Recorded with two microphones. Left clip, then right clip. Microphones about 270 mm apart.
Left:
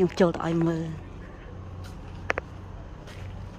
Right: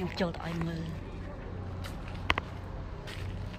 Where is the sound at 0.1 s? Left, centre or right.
Left.